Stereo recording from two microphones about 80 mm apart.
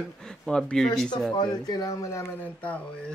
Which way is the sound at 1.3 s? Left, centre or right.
Left.